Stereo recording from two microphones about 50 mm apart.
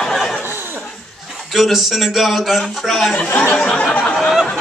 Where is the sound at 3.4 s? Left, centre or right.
Left.